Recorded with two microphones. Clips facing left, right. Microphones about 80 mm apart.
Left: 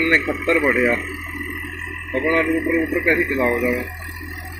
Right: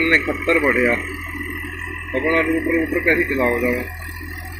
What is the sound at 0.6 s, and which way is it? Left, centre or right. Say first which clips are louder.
Speech: even; centre.